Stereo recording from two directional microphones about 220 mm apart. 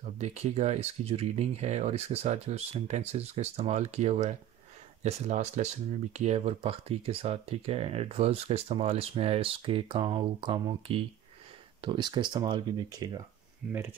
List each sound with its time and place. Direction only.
0.0 s speech: 30° right (ahead or behind)
13.7 s speech: 10° right (ahead or behind)